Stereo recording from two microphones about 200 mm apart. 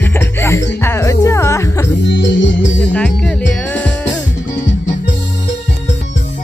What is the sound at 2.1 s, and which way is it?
Organ, 65° left (ahead or behind).